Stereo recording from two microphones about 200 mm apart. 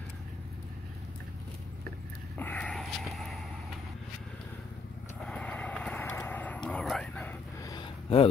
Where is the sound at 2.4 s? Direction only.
5° left (ahead or behind).